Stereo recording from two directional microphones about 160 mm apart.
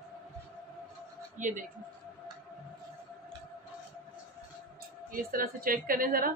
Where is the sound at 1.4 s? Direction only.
50° right (ahead or behind).